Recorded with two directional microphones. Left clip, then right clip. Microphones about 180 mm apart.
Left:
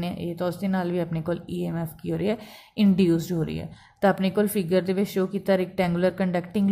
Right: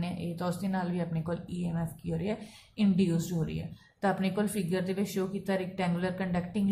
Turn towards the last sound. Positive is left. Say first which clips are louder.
# left 7 dB
turn(degrees=45)  # may be behind; listen again after turning